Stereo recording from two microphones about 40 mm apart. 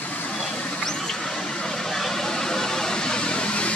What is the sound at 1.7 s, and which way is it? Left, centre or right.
Vehicle, centre.